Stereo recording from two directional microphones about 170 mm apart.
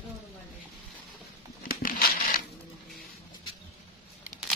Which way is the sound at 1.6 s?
55° left (ahead or behind).